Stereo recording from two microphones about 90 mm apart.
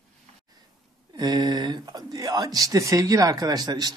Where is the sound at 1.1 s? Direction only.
50° right (ahead or behind).